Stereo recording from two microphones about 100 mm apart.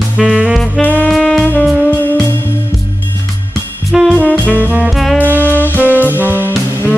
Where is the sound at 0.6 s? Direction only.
15° left (ahead or behind).